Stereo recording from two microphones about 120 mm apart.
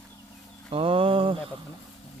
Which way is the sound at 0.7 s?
50° right (ahead or behind).